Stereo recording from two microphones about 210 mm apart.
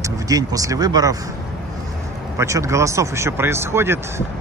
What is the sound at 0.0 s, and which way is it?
Speech, 15° right (ahead or behind).